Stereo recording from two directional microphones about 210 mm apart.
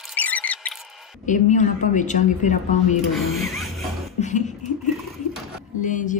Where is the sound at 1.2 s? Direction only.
35° left (ahead or behind).